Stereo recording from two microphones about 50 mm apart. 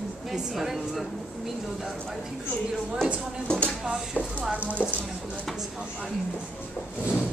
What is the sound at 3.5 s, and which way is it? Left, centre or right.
Speech, centre.